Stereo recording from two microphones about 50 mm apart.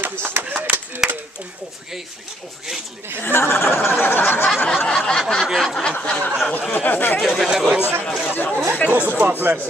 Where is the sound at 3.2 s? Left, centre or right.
Left.